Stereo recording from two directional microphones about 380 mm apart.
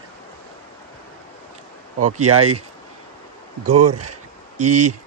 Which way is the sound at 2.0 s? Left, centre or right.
Right.